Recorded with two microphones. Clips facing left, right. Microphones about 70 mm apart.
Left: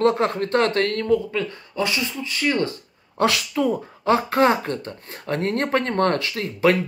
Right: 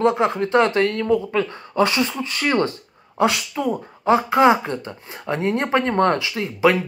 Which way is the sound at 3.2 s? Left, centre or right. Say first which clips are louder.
Even; centre.